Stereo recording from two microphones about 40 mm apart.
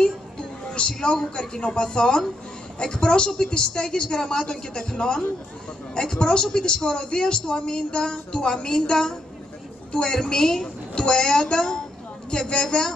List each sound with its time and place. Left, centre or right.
0.7 s a man's voice: left
10.1 s a woman's voice: centre